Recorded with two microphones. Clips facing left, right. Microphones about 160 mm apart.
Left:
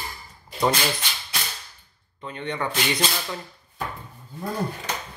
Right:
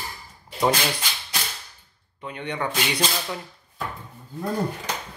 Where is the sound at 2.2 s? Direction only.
10° right (ahead or behind).